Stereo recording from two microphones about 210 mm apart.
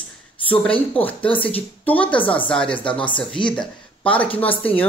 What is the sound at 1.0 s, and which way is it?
Speech, 5° left (ahead or behind).